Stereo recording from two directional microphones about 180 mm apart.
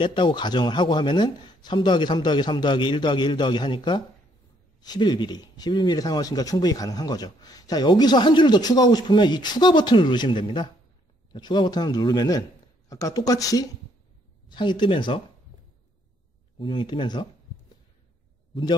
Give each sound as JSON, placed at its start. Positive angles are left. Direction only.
{"t": 0.0, "sound": "speech", "side_deg": 25}
{"t": 16.5, "sound": "speech", "side_deg": 25}
{"t": 18.5, "sound": "a man's voice", "side_deg": 25}